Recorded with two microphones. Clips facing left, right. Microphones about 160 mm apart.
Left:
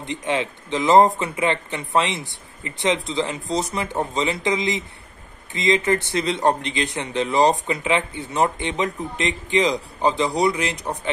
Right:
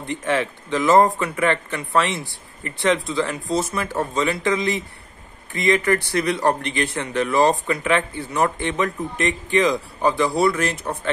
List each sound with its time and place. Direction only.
0.0 s a man's voice: 20° left (ahead or behind)